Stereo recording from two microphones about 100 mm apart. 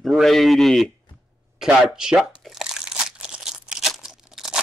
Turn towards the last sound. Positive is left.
turn(degrees=-5)  # may be behind; listen again after turning